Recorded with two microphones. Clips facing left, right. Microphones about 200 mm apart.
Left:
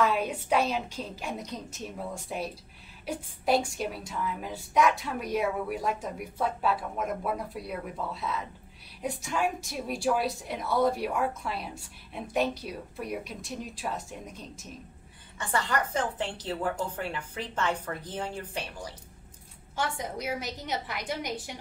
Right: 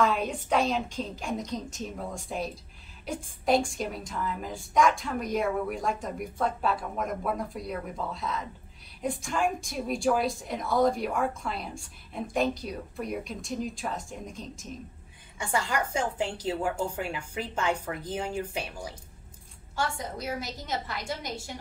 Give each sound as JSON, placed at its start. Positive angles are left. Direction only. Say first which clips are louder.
{"t": 0.0, "sound": "a woman's voice", "louder": "even", "side_deg": 5}
{"t": 15.3, "sound": "a woman's voice", "louder": "even", "side_deg": -10}
{"t": 19.7, "sound": "a woman's voice", "louder": "even", "side_deg": 20}